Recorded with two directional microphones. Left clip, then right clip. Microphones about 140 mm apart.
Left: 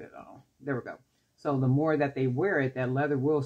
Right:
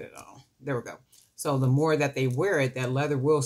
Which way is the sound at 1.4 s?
40° left (ahead or behind).